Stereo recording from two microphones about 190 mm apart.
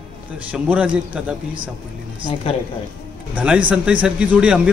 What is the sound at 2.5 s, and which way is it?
Speech, 30° left (ahead or behind).